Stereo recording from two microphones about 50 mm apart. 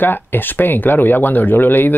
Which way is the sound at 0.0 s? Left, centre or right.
Left.